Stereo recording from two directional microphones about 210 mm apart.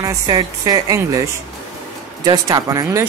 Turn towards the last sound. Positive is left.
turn(degrees=-15)  # may be behind; listen again after turning